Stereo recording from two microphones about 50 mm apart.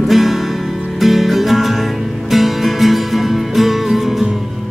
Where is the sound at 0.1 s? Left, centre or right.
Centre.